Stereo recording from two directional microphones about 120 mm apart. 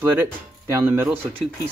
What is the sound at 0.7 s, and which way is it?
Speech, 20° right (ahead or behind).